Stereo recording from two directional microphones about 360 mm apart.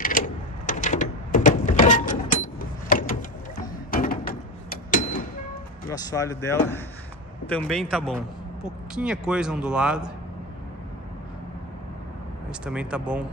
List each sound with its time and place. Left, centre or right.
0.7 s a sound: left
5.9 s speech: centre
12.6 s speech: centre